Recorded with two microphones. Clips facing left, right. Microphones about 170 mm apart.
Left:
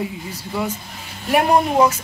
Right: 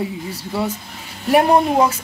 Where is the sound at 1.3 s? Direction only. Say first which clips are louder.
Right 2 dB; 30° right (ahead or behind).